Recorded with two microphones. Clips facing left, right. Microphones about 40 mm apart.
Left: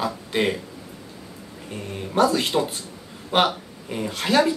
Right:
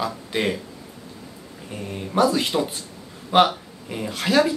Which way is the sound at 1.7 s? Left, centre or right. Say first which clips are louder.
Right 1 dB; centre.